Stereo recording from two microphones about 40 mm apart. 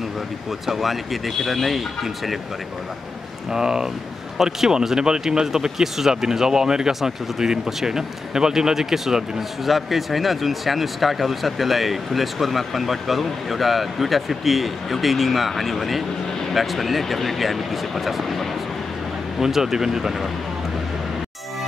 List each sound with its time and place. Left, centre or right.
0.7 s speech: centre
3.5 s speech: centre
19.4 s speech: centre